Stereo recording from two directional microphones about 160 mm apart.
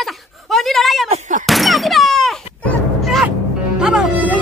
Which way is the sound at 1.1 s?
50° right (ahead or behind).